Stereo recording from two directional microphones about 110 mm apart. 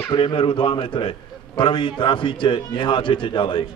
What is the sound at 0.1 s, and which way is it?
A man's voice, 50° left (ahead or behind).